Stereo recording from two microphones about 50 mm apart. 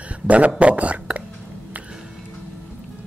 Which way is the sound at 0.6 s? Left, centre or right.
Right.